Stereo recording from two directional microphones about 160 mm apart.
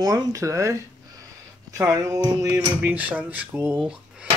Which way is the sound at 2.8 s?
10° right (ahead or behind).